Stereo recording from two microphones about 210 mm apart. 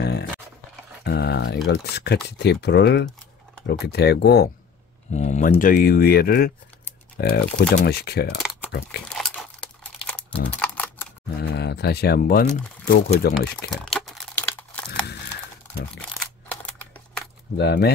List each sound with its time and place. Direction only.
1.0 s a sound: 50° left (ahead or behind)
1.7 s speech: 50° left (ahead or behind)
5.1 s speech: 35° left (ahead or behind)
9.1 s crumpling: centre (ahead or behind)
11.4 s speech: 55° left (ahead or behind)
13.7 s crumpling: centre (ahead or behind)
17.6 s speech: 50° left (ahead or behind)